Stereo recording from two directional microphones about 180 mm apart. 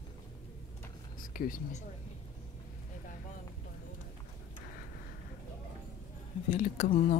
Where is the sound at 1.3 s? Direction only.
50° left (ahead or behind).